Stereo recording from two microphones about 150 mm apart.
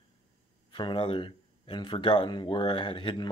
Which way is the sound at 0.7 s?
30° left (ahead or behind).